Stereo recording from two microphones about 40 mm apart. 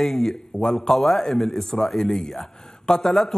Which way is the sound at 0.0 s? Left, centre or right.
Centre.